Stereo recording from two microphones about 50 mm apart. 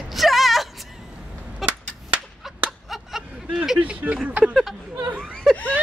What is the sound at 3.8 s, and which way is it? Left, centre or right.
Speech, right.